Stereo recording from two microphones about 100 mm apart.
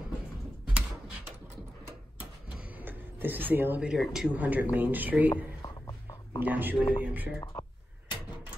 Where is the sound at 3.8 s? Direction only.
5° right (ahead or behind).